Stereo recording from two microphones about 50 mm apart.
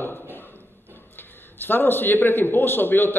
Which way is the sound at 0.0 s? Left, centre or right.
Left.